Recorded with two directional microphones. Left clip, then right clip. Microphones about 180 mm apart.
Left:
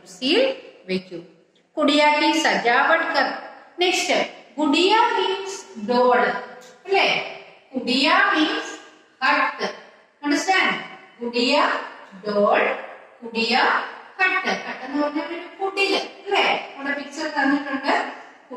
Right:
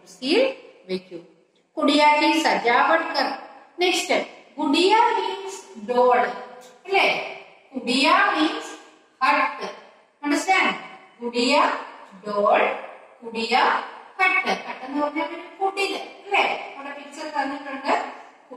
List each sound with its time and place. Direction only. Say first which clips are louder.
0.2 s a woman's voice: left 1 dB; 50° left (ahead or behind)
6.2 s a sound: left 4 dB; 45° left (ahead or behind)
7.9 s a woman's voice: left 1 dB; 50° left (ahead or behind)